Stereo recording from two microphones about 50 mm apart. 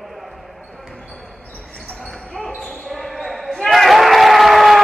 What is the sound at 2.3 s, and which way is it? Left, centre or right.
Basketball bounce, centre.